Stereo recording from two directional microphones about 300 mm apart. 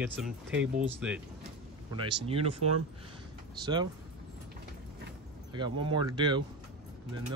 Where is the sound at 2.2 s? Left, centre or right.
Centre.